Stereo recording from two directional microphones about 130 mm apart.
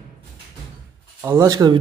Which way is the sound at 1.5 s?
30° right (ahead or behind).